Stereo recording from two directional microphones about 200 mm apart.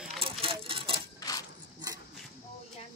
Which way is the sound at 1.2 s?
20° left (ahead or behind).